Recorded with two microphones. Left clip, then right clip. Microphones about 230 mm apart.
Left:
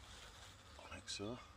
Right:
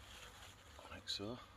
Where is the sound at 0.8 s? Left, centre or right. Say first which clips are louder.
Right 2 dB; centre.